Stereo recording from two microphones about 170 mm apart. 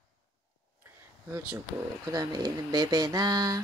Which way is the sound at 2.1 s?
20° right (ahead or behind).